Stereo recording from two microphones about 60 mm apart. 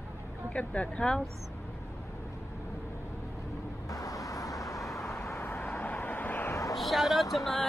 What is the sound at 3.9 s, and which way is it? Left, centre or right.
Vehicle, left.